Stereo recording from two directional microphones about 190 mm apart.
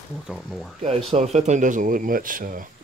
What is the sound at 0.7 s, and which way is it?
Speech, 35° right (ahead or behind).